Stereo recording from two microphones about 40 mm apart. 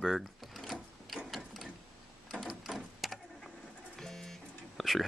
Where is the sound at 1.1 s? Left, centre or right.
Centre.